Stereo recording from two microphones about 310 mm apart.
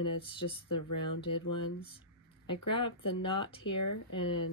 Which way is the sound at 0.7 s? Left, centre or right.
Left.